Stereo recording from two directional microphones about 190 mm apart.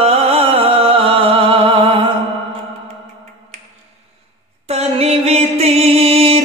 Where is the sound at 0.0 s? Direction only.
30° right (ahead or behind).